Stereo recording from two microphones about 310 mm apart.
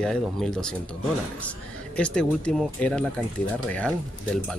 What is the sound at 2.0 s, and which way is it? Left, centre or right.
Speech, centre.